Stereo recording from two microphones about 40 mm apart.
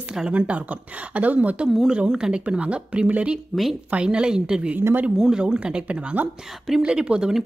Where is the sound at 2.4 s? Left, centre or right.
Right.